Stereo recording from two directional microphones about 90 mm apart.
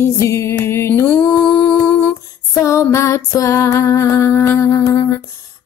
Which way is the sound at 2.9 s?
35° left (ahead or behind).